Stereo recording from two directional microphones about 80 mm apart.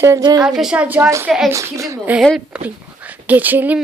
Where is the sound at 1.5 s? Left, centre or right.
Right.